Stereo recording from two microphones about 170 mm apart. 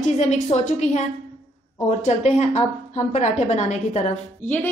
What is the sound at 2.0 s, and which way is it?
A woman's voice, 40° left (ahead or behind).